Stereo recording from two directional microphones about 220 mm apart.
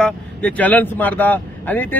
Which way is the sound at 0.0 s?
5° left (ahead or behind).